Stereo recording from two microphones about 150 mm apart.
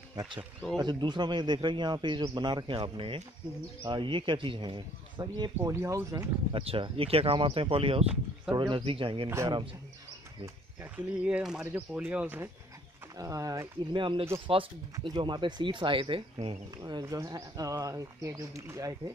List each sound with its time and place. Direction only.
0.1 s a man's voice: 25° right (ahead or behind)
5.6 s speech: 20° right (ahead or behind)
6.5 s a man's voice: 40° right (ahead or behind)
10.4 s speech: 10° right (ahead or behind)
13.2 s speech: 20° right (ahead or behind)
15.0 s speech: 30° right (ahead or behind)